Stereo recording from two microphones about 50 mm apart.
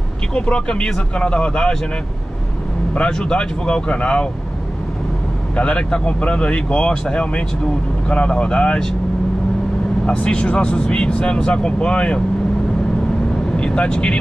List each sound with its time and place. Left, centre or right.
0.3 s speech: left
3.1 s speech: centre
5.6 s speech: left
10.0 s speech: left
13.6 s speech: left